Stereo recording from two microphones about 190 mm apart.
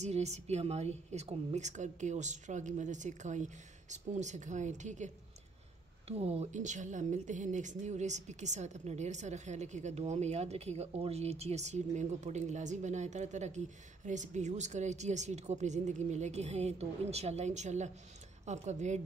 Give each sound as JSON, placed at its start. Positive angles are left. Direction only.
{"t": 0.0, "sound": "a woman's voice", "side_deg": -35}